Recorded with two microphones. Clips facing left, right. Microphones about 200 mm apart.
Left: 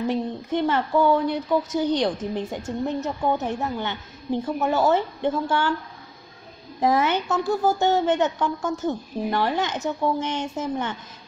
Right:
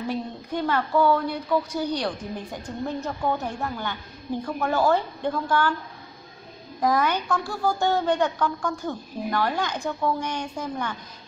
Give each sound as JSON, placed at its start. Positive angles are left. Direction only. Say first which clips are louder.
{"t": 0.1, "sound": "speech", "louder": "left 4 dB", "side_deg": 20}
{"t": 6.8, "sound": "speech", "louder": "left 2 dB", "side_deg": 25}